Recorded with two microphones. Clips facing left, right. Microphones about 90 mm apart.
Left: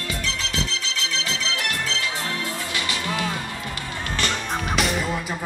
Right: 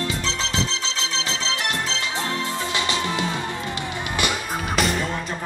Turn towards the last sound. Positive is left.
turn(degrees=0)  # may be behind; listen again after turning